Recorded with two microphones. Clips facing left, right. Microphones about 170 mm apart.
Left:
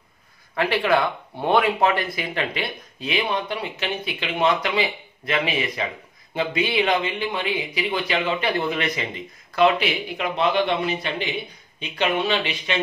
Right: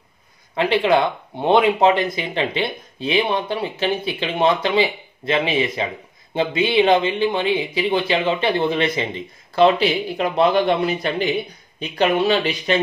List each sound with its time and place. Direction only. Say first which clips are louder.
0.6 s speech: right 4 dB; 20° right (ahead or behind); by 12.7 s 40° right (ahead or behind)